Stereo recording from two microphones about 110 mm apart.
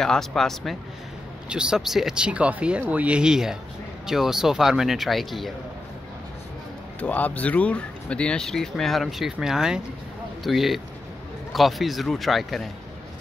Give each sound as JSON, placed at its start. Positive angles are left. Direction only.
{"t": 0.0, "sound": "speech", "side_deg": 5}
{"t": 1.5, "sound": "speech", "side_deg": -10}
{"t": 7.0, "sound": "speech", "side_deg": 15}